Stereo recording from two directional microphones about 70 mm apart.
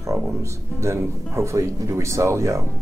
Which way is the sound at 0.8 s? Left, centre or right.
Right.